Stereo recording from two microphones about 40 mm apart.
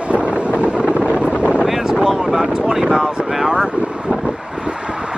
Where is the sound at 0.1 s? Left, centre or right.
Right.